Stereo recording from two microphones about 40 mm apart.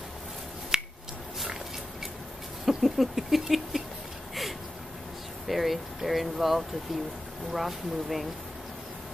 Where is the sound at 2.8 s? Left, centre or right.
Centre.